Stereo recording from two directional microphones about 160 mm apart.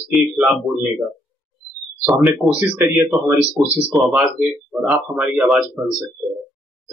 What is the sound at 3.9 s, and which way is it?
Speech, centre (ahead or behind).